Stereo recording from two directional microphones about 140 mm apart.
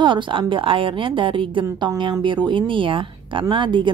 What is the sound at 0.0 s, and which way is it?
A woman's voice, 35° right (ahead or behind).